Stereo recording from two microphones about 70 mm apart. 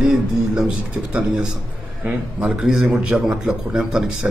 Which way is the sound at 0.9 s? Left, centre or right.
Centre.